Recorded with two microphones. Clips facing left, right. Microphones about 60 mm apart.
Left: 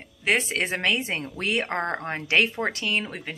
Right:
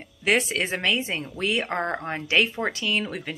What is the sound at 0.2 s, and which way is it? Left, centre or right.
Speech, left.